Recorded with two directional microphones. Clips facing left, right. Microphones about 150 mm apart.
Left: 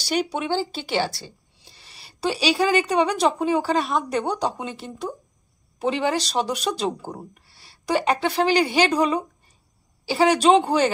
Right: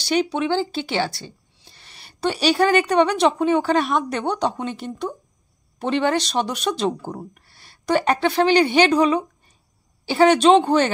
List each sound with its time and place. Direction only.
0.0 s speech: 5° left (ahead or behind)
1.6 s a sound: 5° left (ahead or behind)
2.4 s speech: 5° left (ahead or behind)
6.0 s speech: 5° left (ahead or behind)